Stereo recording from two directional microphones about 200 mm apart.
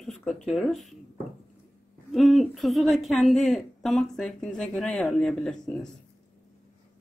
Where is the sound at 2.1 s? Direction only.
Centre (ahead or behind).